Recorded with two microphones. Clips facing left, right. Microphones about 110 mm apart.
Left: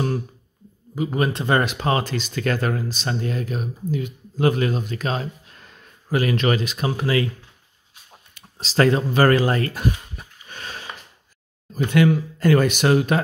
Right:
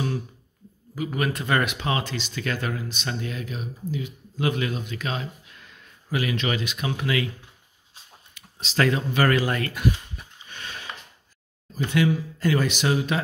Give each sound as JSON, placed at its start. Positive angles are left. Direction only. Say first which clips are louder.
{"t": 0.9, "sound": "speech", "louder": "left 4 dB", "side_deg": 30}
{"t": 8.4, "sound": "a sound", "louder": "left 5 dB", "side_deg": 35}
{"t": 11.7, "sound": "speech", "louder": "left 5 dB", "side_deg": 55}